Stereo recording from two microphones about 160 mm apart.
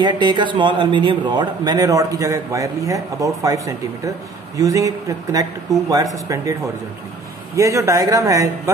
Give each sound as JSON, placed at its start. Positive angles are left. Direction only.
{"t": 0.0, "sound": "a man's voice", "side_deg": -30}